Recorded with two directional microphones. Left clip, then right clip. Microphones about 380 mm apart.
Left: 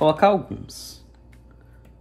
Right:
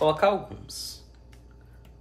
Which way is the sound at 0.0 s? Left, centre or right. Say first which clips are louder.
Left 5 dB; centre.